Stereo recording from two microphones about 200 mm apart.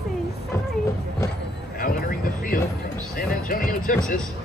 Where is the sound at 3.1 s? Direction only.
45° left (ahead or behind).